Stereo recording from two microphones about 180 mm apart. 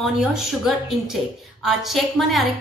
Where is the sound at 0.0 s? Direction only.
Centre (ahead or behind).